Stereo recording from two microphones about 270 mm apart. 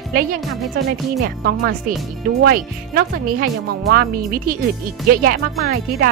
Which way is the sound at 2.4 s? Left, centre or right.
Right.